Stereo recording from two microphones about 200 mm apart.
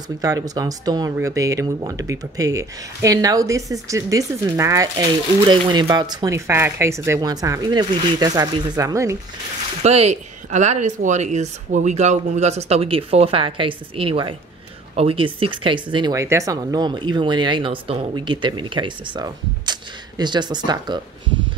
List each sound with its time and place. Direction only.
0.2 s speech: 20° right (ahead or behind)
9.8 s speech: 35° right (ahead or behind)